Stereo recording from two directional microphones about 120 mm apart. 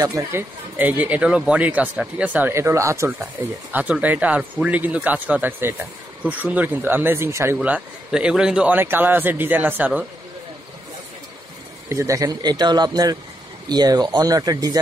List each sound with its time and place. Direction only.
0.0 s speech: 20° right (ahead or behind)
3.7 s speech: 15° right (ahead or behind)
7.5 s speech: 10° right (ahead or behind)
11.9 s speech: 25° right (ahead or behind)